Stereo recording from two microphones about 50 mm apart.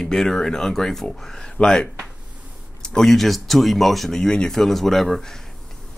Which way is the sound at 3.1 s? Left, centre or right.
Centre.